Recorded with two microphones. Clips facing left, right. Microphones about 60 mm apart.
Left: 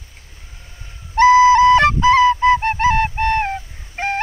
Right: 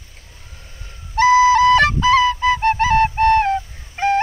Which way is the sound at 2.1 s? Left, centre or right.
Left.